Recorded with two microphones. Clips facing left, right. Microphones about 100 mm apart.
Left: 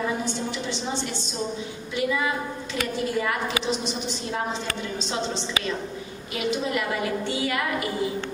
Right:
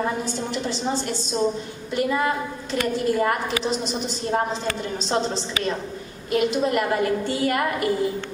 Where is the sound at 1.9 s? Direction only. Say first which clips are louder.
Right 3 dB; 45° right (ahead or behind).